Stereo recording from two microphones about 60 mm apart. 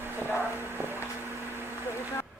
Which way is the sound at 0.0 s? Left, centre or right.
Right.